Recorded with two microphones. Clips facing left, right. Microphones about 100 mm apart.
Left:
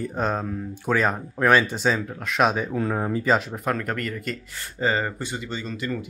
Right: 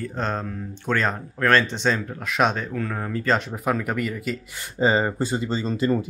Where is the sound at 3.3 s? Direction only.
Centre (ahead or behind).